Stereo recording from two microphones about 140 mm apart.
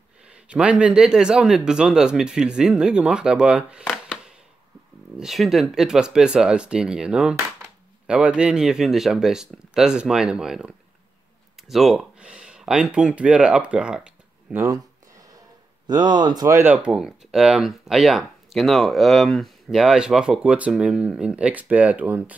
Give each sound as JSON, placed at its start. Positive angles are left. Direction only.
{"t": 0.5, "sound": "speech", "side_deg": -10}
{"t": 14.6, "sound": "a sound", "side_deg": -25}
{"t": 15.9, "sound": "speech", "side_deg": -30}